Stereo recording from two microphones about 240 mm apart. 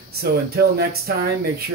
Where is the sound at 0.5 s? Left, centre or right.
Right.